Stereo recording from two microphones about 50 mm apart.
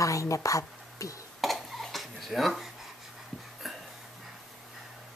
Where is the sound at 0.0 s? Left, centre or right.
Left.